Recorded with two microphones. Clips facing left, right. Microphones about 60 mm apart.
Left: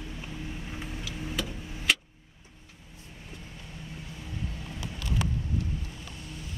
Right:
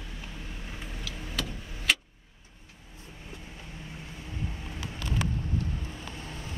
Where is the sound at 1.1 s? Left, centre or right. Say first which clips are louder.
Left 1 dB; centre.